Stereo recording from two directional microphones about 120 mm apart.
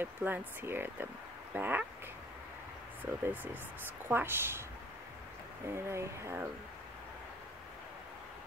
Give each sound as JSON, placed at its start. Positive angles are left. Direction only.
{"t": 0.0, "sound": "speech", "side_deg": -15}
{"t": 3.1, "sound": "speech", "side_deg": -15}
{"t": 5.7, "sound": "speech", "side_deg": -20}